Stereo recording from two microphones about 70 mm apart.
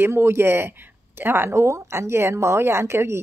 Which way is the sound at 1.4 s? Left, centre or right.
Right.